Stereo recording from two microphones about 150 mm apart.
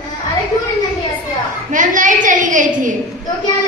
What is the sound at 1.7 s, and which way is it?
A woman's voice, 60° right (ahead or behind).